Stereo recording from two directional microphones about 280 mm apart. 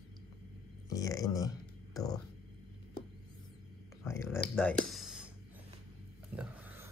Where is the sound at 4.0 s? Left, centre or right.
Centre.